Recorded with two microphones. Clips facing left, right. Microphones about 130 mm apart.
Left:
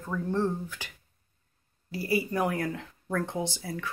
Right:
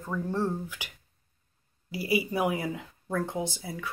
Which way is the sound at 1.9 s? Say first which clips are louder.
Even; 15° right (ahead or behind).